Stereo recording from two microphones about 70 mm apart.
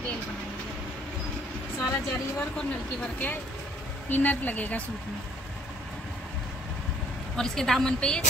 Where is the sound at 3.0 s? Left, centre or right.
Left.